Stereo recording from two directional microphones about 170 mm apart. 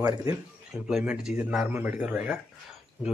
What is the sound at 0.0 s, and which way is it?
Speech, 20° right (ahead or behind).